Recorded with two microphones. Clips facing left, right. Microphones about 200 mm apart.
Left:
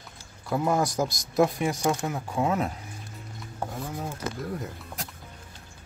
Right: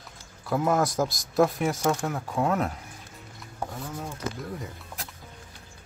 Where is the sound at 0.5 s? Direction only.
Centre (ahead or behind).